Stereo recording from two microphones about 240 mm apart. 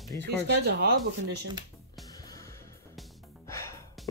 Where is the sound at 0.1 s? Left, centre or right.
Centre.